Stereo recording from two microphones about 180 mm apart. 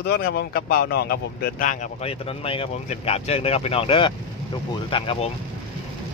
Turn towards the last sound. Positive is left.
turn(degrees=30)  # may be behind; listen again after turning